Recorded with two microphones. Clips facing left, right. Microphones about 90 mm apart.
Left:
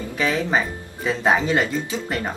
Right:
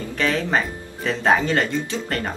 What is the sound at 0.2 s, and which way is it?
Speech, 10° left (ahead or behind).